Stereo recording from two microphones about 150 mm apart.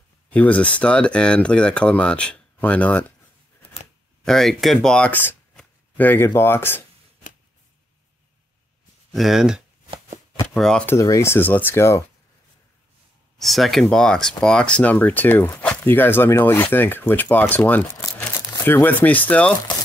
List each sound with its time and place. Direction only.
0.3 s speech: 10° left (ahead or behind)
4.2 s speech: centre (ahead or behind)
9.1 s speech: centre (ahead or behind)
11.0 s speech: 20° left (ahead or behind)
13.4 s speech: centre (ahead or behind)
18.0 s crumpling: 20° left (ahead or behind)
18.6 s speech: 15° left (ahead or behind)